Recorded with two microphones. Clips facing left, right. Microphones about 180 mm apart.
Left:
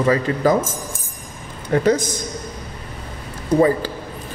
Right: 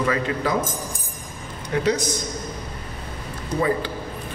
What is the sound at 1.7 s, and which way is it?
Speech, 50° left (ahead or behind).